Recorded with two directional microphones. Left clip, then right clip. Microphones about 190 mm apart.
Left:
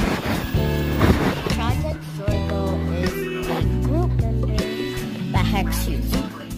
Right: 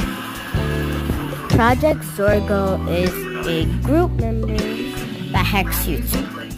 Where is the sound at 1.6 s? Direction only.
30° right (ahead or behind).